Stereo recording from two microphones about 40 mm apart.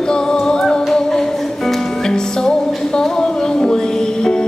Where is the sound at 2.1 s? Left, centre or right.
Centre.